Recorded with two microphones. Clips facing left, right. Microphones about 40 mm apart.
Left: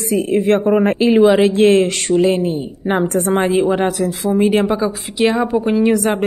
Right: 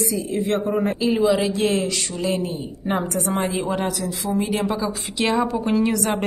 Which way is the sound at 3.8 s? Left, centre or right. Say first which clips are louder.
Left 8 dB; left.